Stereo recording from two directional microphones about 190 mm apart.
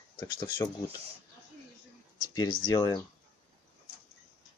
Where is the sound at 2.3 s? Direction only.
20° left (ahead or behind).